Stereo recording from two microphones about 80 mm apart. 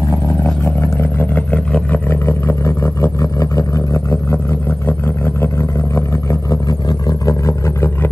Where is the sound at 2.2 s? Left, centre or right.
Left.